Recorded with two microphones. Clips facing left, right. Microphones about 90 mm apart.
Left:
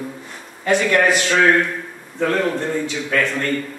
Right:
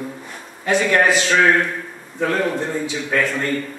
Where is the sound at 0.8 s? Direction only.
25° right (ahead or behind).